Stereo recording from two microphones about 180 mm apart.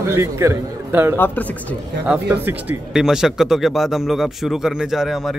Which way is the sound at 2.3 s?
10° right (ahead or behind).